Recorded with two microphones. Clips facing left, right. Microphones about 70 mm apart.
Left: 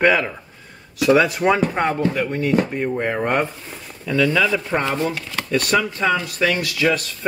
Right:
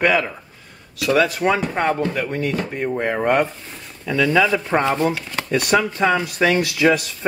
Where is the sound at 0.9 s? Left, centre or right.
Left.